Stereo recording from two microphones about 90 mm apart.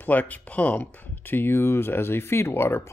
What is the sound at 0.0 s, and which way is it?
Speech, 20° left (ahead or behind).